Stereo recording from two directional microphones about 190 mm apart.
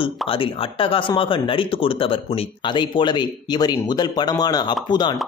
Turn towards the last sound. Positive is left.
turn(degrees=20)  # may be behind; listen again after turning